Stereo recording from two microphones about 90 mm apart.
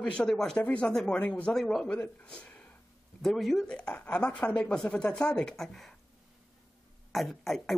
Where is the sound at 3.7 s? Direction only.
10° left (ahead or behind).